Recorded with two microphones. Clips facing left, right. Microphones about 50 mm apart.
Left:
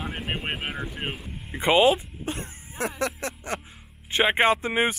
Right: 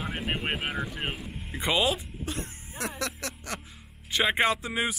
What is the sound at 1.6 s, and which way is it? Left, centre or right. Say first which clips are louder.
Music: left 7 dB; left.